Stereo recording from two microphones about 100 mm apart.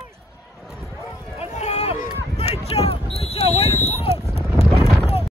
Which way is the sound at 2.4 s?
90° left.